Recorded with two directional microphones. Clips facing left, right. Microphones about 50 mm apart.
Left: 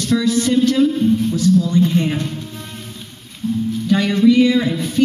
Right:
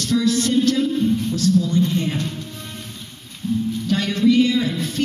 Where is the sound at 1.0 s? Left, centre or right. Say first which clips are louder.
Left 4 dB; centre.